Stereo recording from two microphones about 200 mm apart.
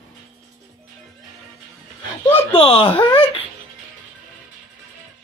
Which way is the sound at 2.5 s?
30° left (ahead or behind).